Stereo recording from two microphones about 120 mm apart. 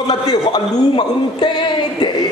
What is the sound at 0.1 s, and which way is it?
A man's voice, 35° left (ahead or behind).